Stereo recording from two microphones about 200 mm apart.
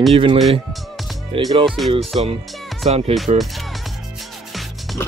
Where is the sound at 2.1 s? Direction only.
30° right (ahead or behind).